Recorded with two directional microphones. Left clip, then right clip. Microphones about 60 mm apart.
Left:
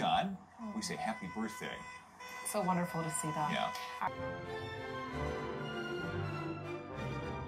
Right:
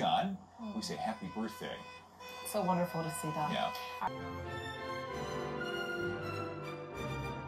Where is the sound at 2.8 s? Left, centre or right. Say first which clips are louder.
Right 2 dB; right.